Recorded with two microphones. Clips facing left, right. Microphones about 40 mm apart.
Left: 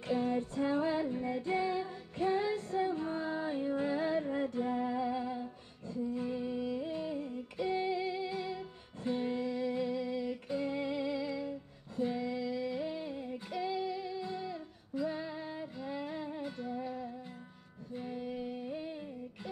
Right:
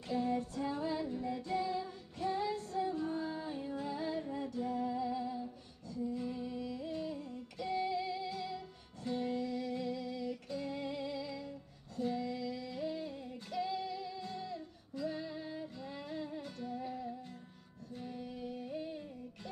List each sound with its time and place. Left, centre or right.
0.1 s music: left
12.0 s female singing: centre
17.9 s music: centre